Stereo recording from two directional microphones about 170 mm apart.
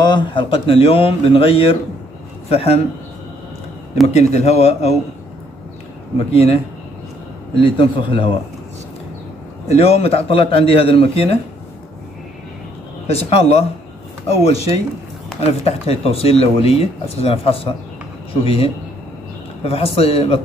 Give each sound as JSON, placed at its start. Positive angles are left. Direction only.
{"t": 0.0, "sound": "speech", "side_deg": 30}
{"t": 4.1, "sound": "speech", "side_deg": 40}
{"t": 6.3, "sound": "speech", "side_deg": 35}
{"t": 7.6, "sound": "a man's voice", "side_deg": 30}
{"t": 9.7, "sound": "speech", "side_deg": 35}
{"t": 13.0, "sound": "speech", "side_deg": 35}